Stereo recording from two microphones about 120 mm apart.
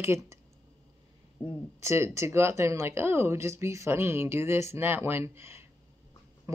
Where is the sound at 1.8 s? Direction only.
25° right (ahead or behind).